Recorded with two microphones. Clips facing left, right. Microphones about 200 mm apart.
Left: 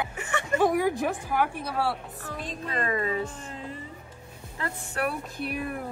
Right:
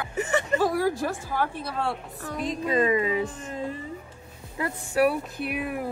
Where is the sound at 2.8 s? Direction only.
15° right (ahead or behind).